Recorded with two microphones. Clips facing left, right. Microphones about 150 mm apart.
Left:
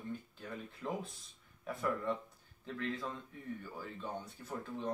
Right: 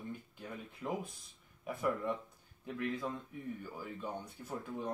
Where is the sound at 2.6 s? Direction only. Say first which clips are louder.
Right 2 dB; 15° right (ahead or behind).